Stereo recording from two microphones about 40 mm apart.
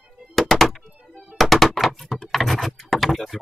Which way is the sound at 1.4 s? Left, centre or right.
Centre.